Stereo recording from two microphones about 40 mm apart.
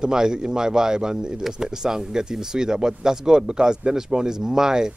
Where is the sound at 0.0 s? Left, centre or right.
Centre.